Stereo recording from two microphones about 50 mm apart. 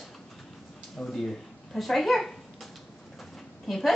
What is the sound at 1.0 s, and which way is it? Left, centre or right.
Speech, centre.